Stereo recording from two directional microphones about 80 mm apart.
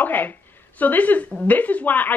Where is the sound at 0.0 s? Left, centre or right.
Left.